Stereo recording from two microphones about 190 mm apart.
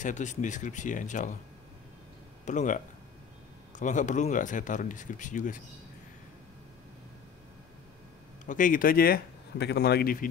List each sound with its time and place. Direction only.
0.0 s speech: 40° left (ahead or behind)
2.4 s speech: 40° left (ahead or behind)
8.5 s speech: 45° left (ahead or behind)